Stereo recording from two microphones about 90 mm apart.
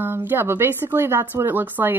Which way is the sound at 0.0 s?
20° right (ahead or behind).